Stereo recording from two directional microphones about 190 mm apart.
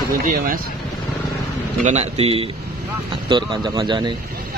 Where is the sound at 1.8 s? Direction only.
35° right (ahead or behind).